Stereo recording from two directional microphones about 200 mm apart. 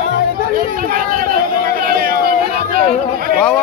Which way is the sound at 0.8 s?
45° right (ahead or behind).